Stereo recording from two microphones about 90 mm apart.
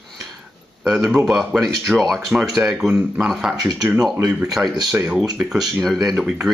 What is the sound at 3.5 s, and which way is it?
Speech, 45° right (ahead or behind).